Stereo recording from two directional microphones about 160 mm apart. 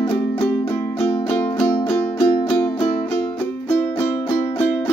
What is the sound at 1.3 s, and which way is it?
Music, 10° left (ahead or behind).